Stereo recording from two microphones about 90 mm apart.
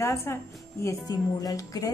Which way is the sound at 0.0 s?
30° left (ahead or behind).